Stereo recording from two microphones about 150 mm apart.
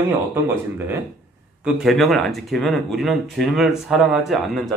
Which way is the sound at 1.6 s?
Centre (ahead or behind).